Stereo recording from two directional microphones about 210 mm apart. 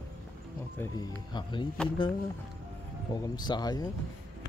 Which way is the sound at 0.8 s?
20° left (ahead or behind).